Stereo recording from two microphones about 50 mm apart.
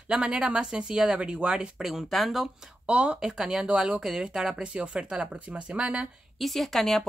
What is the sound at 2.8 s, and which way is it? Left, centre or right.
Speech, centre.